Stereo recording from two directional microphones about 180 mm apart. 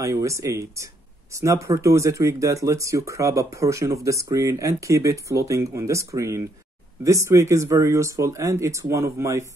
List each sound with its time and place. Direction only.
0.0 s speech: 15° right (ahead or behind)